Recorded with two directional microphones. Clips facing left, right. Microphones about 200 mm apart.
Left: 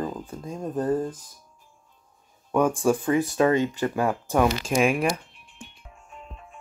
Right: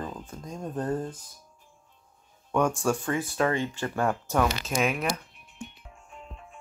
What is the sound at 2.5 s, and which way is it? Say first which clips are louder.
Speech: left 4 dB; 10° left (ahead or behind).